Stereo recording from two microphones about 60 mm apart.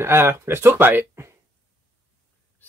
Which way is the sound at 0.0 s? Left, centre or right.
Right.